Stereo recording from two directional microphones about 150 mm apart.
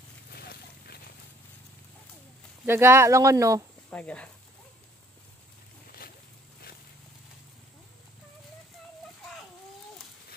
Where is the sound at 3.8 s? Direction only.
10° left (ahead or behind).